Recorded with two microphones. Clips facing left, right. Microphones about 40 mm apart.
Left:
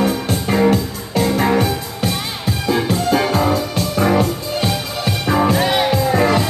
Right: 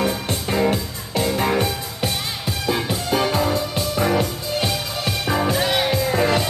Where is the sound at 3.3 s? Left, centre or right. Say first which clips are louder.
Left 4 dB; centre.